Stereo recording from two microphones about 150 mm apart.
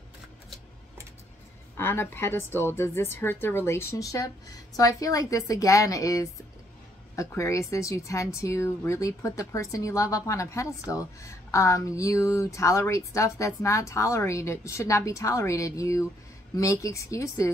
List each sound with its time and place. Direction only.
1.8 s a woman's voice: 15° left (ahead or behind)